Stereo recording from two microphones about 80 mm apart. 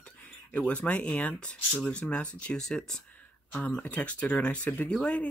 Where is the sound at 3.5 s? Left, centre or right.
Left.